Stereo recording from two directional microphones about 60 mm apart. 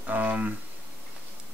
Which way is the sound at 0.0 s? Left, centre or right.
Right.